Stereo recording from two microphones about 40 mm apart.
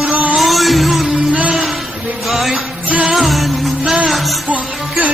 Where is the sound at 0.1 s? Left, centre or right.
Right.